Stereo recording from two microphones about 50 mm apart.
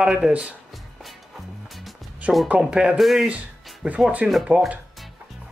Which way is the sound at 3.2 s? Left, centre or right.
Right.